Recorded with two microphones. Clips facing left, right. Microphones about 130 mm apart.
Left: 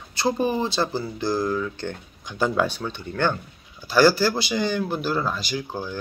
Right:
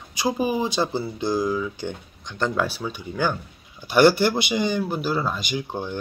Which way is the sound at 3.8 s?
20° right (ahead or behind).